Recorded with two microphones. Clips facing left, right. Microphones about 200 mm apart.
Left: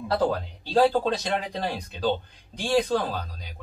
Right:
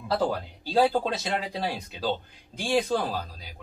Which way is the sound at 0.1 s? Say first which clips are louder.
Left 2 dB; centre (ahead or behind).